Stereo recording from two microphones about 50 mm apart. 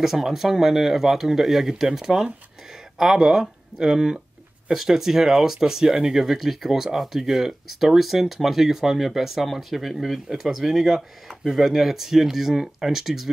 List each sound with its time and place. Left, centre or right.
0.0 s speech: centre